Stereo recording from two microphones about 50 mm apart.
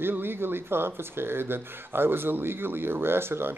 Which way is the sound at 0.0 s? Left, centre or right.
Right.